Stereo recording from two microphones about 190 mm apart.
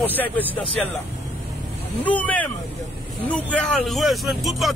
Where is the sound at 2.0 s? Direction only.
10° left (ahead or behind).